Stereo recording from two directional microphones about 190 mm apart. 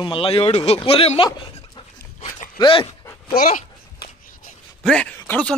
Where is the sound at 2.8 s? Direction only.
15° left (ahead or behind).